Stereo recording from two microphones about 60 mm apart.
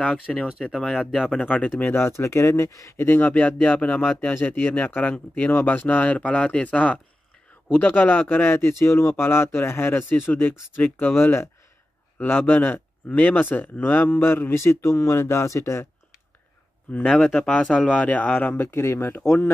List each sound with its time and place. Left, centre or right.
0.0 s speech: centre
0.5 s speech: centre
0.7 s speech: centre
1.4 s speech: left
2.0 s speech: left
3.0 s speech: left
3.3 s speech: left
4.3 s speech: left
17.1 s speech: centre
17.4 s speech: centre; by 19.2 s left